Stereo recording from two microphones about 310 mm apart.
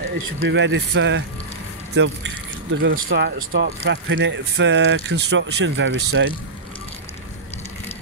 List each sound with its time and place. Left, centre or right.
0.4 s speech: right